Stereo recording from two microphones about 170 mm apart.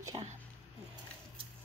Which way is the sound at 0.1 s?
30° right (ahead or behind).